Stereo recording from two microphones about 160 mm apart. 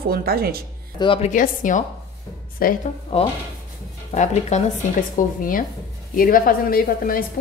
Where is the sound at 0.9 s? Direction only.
35° left (ahead or behind).